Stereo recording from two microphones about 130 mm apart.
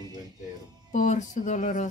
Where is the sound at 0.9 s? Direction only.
70° left (ahead or behind).